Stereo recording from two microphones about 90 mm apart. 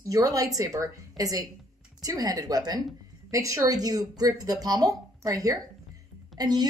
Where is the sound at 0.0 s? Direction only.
40° right (ahead or behind).